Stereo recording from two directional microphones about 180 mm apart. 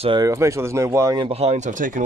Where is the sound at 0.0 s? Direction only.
25° right (ahead or behind).